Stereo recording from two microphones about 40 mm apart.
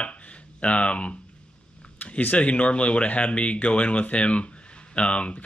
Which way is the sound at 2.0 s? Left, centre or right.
Left.